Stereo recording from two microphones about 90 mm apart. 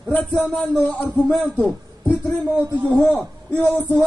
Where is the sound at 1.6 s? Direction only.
15° left (ahead or behind).